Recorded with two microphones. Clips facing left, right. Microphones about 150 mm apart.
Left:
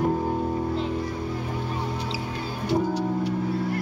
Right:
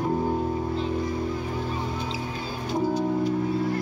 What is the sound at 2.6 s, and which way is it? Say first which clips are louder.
Music: even; 75° left (ahead or behind).